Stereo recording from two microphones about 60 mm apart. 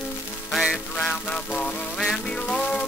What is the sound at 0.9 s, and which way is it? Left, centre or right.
Music, centre.